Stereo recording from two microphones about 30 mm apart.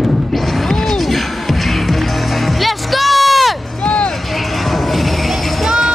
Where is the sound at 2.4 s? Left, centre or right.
Centre.